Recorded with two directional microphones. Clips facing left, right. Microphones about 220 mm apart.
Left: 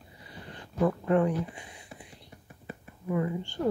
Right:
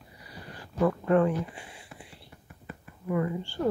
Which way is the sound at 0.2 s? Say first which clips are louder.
Even; 25° left (ahead or behind).